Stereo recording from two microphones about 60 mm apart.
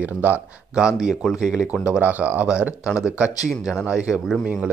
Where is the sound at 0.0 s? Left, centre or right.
Right.